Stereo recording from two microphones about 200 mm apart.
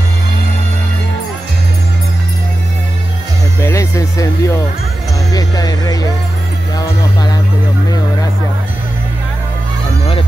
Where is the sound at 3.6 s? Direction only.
15° left (ahead or behind).